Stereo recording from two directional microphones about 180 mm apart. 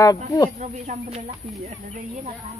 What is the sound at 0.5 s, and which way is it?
Speech, 40° right (ahead or behind).